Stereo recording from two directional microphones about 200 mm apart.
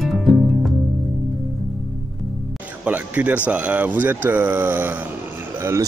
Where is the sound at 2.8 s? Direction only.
10° right (ahead or behind).